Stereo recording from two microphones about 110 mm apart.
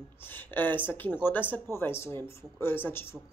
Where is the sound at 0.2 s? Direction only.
20° left (ahead or behind).